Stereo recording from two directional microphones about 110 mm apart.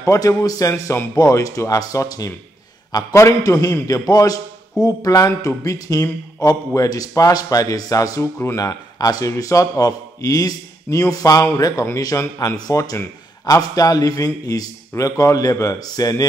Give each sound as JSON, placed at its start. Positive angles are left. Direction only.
{"t": 0.0, "sound": "a man's voice", "side_deg": 30}